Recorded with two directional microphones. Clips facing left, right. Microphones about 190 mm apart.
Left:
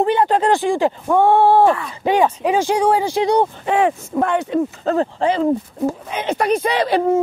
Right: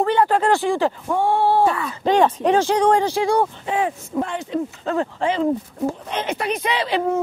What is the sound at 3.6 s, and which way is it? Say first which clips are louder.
Speech: left 5 dB; 70° left (ahead or behind).